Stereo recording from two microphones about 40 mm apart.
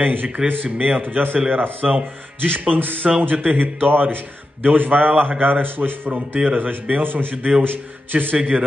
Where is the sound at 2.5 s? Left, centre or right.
Right.